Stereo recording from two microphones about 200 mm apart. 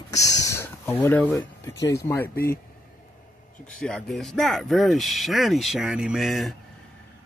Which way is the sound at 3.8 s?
5° left (ahead or behind).